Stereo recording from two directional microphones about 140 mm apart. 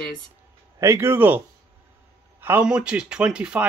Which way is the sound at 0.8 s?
15° right (ahead or behind).